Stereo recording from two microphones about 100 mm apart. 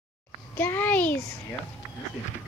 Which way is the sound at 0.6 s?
20° left (ahead or behind).